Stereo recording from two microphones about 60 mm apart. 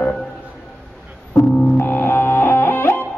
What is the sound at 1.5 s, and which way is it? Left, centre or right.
Music, centre.